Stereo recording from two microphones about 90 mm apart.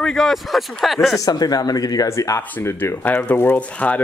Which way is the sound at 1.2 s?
45° left (ahead or behind).